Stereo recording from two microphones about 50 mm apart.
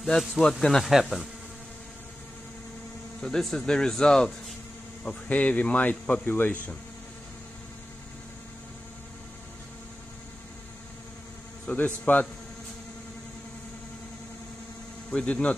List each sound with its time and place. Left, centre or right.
0.0 s speech: centre
3.2 s speech: centre
5.3 s a man's voice: left
11.7 s a man's voice: left
15.0 s speech: left